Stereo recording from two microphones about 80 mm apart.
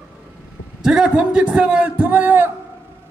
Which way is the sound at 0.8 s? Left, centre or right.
Centre.